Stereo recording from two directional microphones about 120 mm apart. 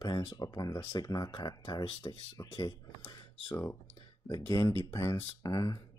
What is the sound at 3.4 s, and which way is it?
Speech, 25° left (ahead or behind).